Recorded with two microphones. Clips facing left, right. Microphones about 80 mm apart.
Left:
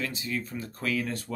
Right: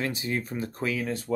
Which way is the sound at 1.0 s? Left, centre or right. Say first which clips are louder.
Right 3 dB; centre.